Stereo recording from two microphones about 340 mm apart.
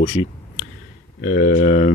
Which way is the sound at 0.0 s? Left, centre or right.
Centre.